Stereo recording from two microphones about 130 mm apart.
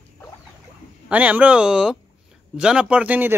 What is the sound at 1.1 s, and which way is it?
Speech, 10° right (ahead or behind).